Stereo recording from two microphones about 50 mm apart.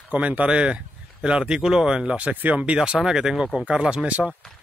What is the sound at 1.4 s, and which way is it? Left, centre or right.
Speech, centre.